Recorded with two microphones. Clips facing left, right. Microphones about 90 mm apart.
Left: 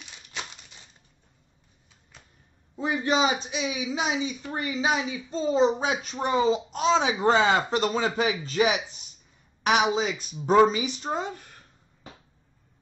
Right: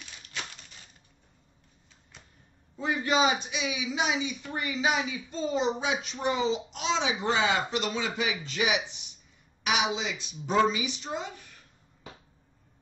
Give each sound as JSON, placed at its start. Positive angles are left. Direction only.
{"t": 0.3, "sound": "crumpling", "side_deg": 20}
{"t": 2.1, "sound": "a sound", "side_deg": 0}
{"t": 2.8, "sound": "a woman's voice", "side_deg": 25}